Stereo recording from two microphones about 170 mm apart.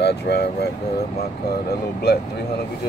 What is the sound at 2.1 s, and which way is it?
Speech, 65° left (ahead or behind).